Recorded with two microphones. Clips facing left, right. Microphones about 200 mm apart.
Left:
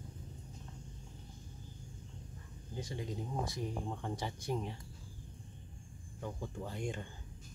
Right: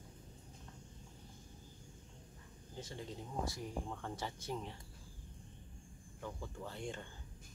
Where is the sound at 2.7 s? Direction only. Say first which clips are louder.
Left 5 dB; 15° left (ahead or behind).